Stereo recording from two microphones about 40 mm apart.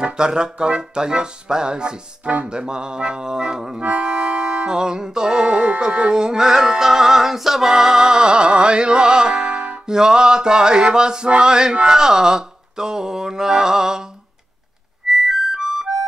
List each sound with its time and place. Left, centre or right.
0.0 s music: right
4.0 s accordion: right
4.6 s music: centre
6.1 s music: centre
9.8 s music: centre
15.2 s harmonica: centre